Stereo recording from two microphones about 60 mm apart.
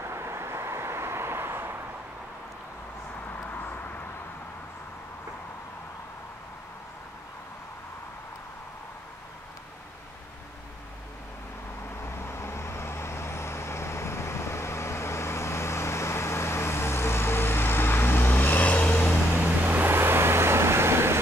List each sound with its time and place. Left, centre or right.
0.0 s vehicle: right
3.3 s a sound: left
12.0 s vehicle: left
19.4 s vehicle: right